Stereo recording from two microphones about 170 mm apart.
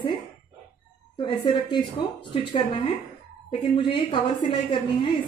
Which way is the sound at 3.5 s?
30° left (ahead or behind).